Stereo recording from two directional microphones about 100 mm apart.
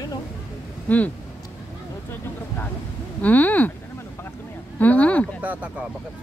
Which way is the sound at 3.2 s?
15° left (ahead or behind).